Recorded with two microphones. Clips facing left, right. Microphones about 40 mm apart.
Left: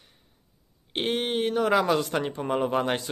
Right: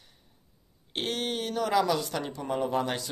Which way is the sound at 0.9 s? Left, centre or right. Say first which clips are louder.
Left 4 dB; left.